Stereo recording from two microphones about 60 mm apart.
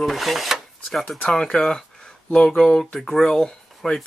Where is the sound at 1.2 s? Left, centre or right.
Centre.